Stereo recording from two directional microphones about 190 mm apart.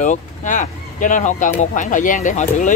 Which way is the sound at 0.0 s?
40° left (ahead or behind).